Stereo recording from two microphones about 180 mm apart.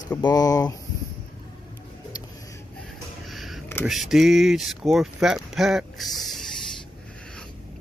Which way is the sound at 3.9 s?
Centre (ahead or behind).